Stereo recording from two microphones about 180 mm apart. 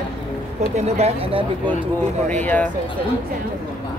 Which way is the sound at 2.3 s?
10° left (ahead or behind).